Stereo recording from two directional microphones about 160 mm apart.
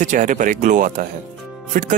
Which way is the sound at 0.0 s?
50° right (ahead or behind).